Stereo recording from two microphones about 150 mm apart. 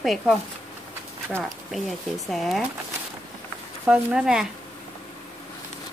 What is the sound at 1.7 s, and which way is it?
Speech, centre (ahead or behind).